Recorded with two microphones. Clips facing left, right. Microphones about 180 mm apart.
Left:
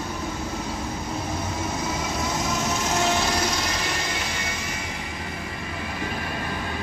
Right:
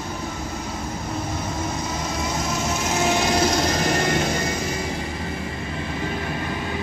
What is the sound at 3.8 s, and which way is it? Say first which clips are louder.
Vehicle: right 8 dB; 50° right (ahead or behind).